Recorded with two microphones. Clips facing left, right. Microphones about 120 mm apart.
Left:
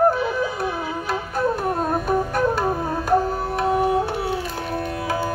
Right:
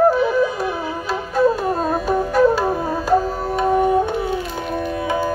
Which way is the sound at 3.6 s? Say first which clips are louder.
Right 4 dB; 5° left (ahead or behind).